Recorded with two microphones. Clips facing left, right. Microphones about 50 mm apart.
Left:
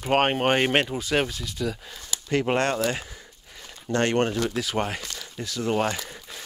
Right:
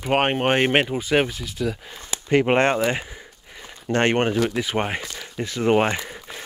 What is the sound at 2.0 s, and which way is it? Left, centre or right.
Speech, right.